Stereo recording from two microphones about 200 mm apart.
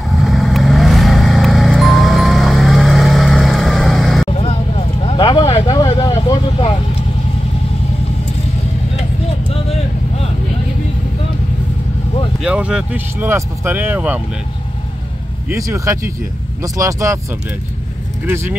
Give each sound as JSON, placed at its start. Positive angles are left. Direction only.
{"t": 0.1, "sound": "vehicle", "side_deg": 0}
{"t": 4.3, "sound": "vehicle", "side_deg": 30}
{"t": 9.5, "sound": "vehicle", "side_deg": 30}
{"t": 12.4, "sound": "speech", "side_deg": -5}
{"t": 15.5, "sound": "speech", "side_deg": -15}
{"t": 18.2, "sound": "speech", "side_deg": -10}